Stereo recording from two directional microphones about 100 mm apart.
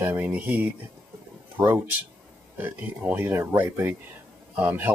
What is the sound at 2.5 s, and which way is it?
Speech, 20° right (ahead or behind).